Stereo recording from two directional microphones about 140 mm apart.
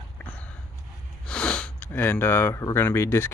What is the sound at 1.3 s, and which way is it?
Speech, 10° left (ahead or behind).